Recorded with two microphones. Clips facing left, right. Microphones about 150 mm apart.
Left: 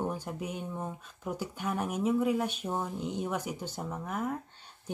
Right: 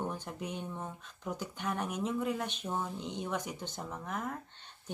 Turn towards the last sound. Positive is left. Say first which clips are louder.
# left 4 dB
turn(degrees=5)  # may be behind; listen again after turning